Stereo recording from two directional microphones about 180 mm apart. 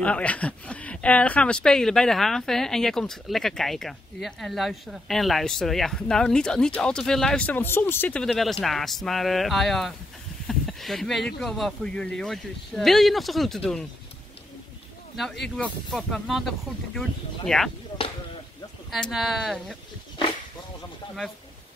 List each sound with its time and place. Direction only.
0.0 s speech: 5° left (ahead or behind)
15.4 s speech: 5° left (ahead or behind)
18.9 s speech: centre (ahead or behind)